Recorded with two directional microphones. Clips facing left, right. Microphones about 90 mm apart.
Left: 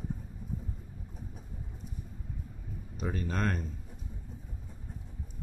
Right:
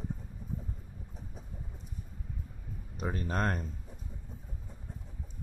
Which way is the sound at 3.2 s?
35° right (ahead or behind).